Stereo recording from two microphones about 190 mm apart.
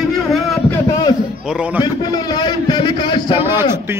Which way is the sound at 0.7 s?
20° left (ahead or behind).